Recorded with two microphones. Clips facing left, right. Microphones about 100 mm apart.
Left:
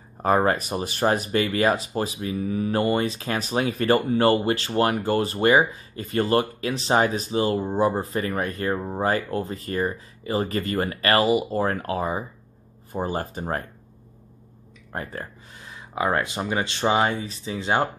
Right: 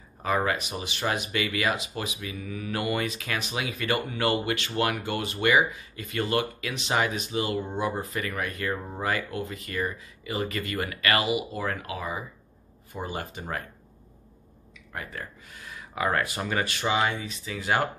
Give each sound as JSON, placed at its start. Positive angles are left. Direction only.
{"t": 0.2, "sound": "speech", "side_deg": 40}
{"t": 14.9, "sound": "speech", "side_deg": 35}